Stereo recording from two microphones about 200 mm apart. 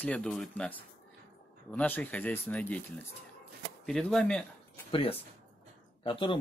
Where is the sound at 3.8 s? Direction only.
Centre (ahead or behind).